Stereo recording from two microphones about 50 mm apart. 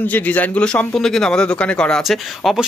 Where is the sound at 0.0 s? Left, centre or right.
Left.